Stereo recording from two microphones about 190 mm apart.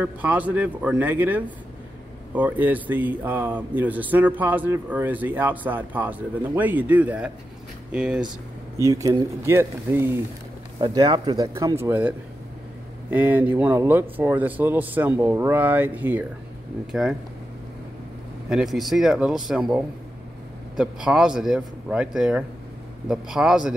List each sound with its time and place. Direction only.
0.0 s a man's voice: 10° right (ahead or behind)
8.7 s speech: 15° right (ahead or behind)
10.8 s a man's voice: 25° right (ahead or behind); by 17.2 s 5° right (ahead or behind)
18.5 s a man's voice: centre (ahead or behind)